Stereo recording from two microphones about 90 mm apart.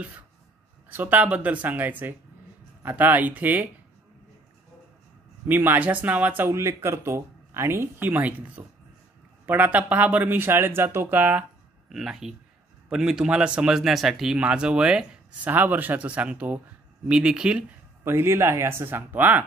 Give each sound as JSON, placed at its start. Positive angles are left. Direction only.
{"t": 0.8, "sound": "speech", "side_deg": -20}
{"t": 5.5, "sound": "speech", "side_deg": -20}
{"t": 6.5, "sound": "speech", "side_deg": -30}
{"t": 11.9, "sound": "speech", "side_deg": -5}
{"t": 18.0, "sound": "speech", "side_deg": -30}